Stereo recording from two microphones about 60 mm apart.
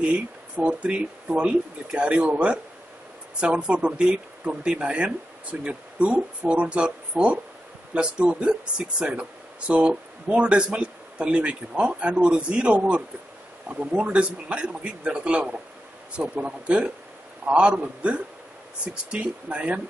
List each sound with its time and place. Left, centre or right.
0.0 s speech: right